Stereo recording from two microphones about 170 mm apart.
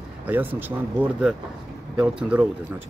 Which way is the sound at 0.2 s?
10° right (ahead or behind).